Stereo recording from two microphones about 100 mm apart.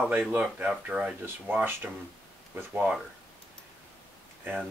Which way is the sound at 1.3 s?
20° right (ahead or behind).